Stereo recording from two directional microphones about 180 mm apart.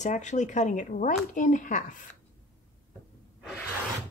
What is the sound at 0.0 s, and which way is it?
Speech, 40° left (ahead or behind).